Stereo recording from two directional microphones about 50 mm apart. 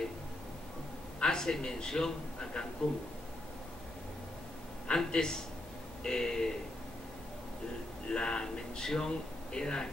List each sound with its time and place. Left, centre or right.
1.2 s a man's voice: centre
4.8 s a man's voice: centre
8.1 s speech: centre